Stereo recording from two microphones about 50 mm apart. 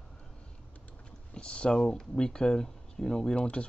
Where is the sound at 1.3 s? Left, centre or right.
Centre.